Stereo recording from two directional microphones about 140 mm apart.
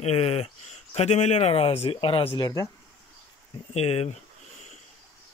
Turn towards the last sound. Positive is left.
turn(degrees=45)  # may be behind; listen again after turning